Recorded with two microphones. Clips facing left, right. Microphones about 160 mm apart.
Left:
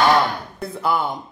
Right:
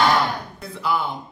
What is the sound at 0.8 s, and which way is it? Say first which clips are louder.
Speech: left 2 dB; 50° left (ahead or behind).